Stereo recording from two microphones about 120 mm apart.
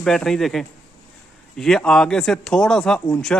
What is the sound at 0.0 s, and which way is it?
Speech, 5° left (ahead or behind).